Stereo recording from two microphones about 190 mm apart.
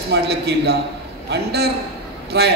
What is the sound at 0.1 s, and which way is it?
A man's voice, 60° right (ahead or behind).